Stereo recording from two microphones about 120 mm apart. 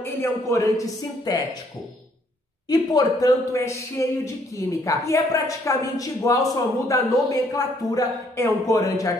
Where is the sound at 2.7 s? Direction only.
30° left (ahead or behind).